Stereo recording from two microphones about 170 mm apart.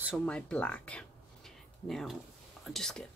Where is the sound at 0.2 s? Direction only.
5° left (ahead or behind).